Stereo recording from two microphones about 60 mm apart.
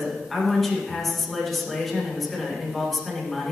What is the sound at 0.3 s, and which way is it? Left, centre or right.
A woman's voice, centre.